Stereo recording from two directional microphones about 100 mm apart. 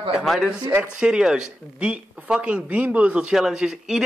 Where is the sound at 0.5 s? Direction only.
15° right (ahead or behind).